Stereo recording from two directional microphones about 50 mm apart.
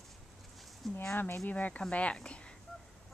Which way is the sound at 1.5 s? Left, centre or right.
Left.